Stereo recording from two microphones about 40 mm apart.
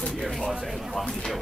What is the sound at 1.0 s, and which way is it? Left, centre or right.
Speech, centre.